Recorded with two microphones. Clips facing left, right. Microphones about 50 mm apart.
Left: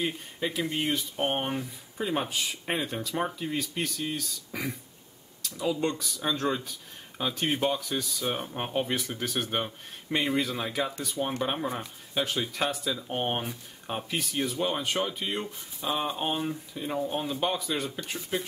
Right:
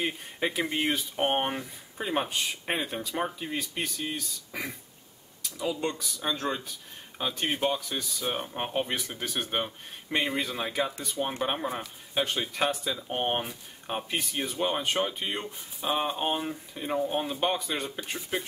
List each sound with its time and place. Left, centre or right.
0.5 s speech: right